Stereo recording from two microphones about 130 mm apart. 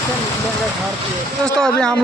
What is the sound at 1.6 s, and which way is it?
Speech, 5° left (ahead or behind).